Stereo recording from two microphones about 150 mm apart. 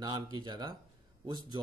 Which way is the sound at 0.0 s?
30° right (ahead or behind).